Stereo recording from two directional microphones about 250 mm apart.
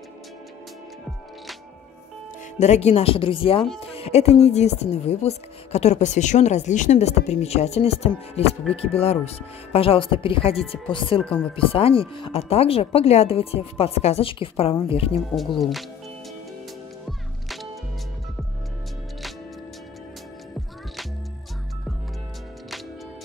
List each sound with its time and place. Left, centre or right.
2.6 s a woman's voice: left
11.2 s speech: centre
11.5 s a woman's voice: left